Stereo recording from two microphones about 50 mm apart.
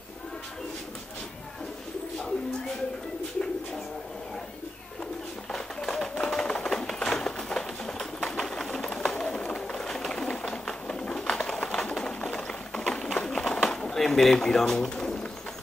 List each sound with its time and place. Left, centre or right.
2.1 s bird: centre
5.5 s typewriter: centre
11.5 s bird: centre
13.9 s pigeon: centre